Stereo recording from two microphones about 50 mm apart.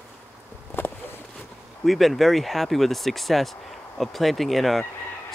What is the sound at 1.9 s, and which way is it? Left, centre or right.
Speech, centre.